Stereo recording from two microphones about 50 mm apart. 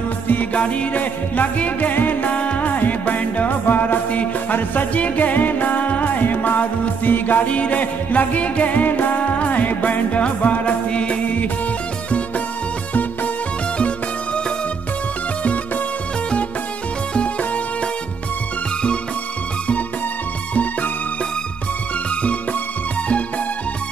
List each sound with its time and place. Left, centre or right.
0.3 s music: left
7.4 s music: left
9.2 s music: left
13.7 s music: left
15.4 s music: left
17.1 s music: left
22.2 s music: left